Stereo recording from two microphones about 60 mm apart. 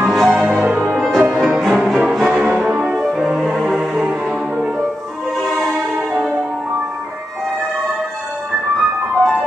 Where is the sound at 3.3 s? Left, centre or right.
Centre.